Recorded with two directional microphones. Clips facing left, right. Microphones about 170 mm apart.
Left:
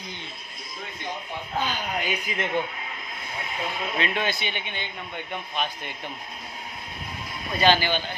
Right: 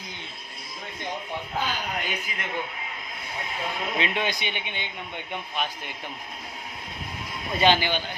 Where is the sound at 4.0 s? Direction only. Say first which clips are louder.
Left 1 dB; 20° right (ahead or behind).